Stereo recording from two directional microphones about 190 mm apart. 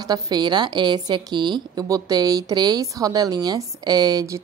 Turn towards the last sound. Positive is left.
turn(degrees=-15)  # may be behind; listen again after turning